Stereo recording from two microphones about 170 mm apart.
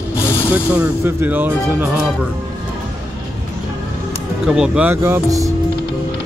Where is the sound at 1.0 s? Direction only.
10° right (ahead or behind).